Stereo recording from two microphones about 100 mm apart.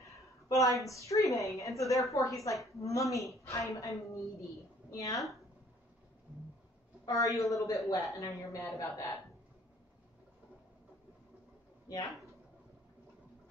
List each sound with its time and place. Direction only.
0.5 s a woman's voice: 35° left (ahead or behind)
7.1 s a woman's voice: 35° left (ahead or behind)